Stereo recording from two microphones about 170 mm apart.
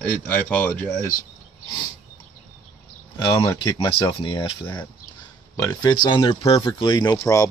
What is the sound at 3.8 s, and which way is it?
Speech, 25° left (ahead or behind).